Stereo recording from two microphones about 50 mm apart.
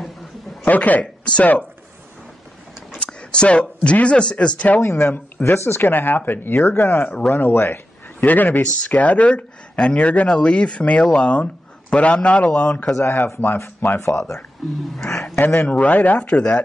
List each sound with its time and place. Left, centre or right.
0.7 s speech: left
1.2 s speech: left
3.0 s speech: centre
4.8 s speech: left
13.0 s speech: left
13.9 s speech: left
15.0 s a man's voice: centre
15.3 s speech: left
15.6 s speech: left